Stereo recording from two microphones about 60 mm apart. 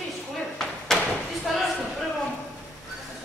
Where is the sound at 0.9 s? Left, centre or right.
Centre.